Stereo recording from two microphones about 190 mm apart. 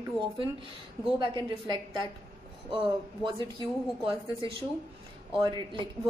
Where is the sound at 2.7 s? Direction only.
25° right (ahead or behind).